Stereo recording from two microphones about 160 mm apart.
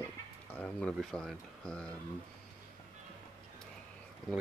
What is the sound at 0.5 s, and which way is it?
Speech, 5° left (ahead or behind).